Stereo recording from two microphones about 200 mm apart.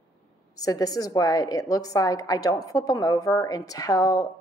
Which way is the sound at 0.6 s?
15° left (ahead or behind).